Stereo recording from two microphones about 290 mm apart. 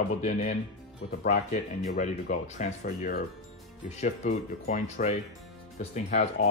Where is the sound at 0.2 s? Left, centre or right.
Left.